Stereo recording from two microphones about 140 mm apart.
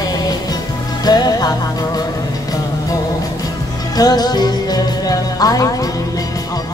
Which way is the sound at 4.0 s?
30° left (ahead or behind).